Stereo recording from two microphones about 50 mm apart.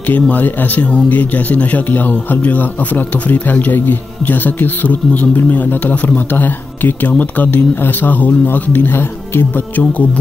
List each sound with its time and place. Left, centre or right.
0.1 s a man's voice: left